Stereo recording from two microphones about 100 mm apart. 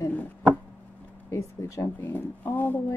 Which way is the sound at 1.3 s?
30° left (ahead or behind).